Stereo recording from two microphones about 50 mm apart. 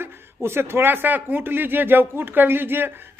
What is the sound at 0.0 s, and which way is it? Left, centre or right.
Speech, right.